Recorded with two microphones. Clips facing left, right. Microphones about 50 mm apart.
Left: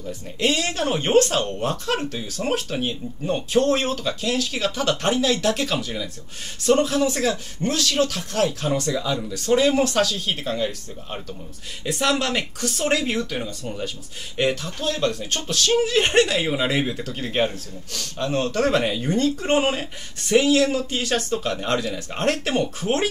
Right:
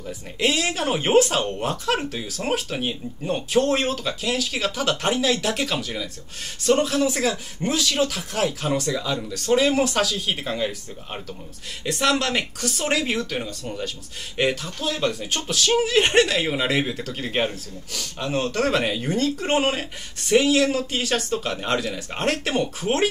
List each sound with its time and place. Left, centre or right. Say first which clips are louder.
0.0 s speech: even; centre